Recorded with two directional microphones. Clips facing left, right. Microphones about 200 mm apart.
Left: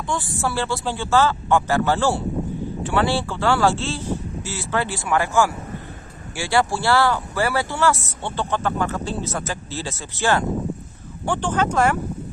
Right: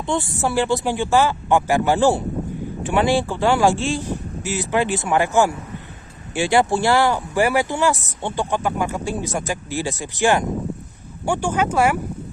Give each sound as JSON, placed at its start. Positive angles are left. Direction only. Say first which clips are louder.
{"t": 0.0, "sound": "speech", "louder": "right 3 dB", "side_deg": -20}